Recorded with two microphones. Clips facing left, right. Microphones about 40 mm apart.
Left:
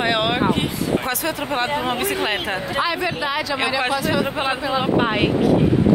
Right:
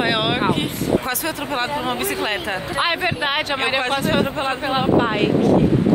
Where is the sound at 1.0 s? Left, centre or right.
Centre.